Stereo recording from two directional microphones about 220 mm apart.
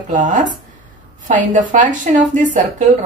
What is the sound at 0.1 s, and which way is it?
A woman's voice, 35° right (ahead or behind).